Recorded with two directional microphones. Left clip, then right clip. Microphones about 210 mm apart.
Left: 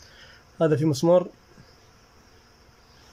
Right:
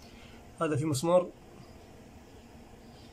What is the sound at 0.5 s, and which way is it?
Speech, 20° left (ahead or behind).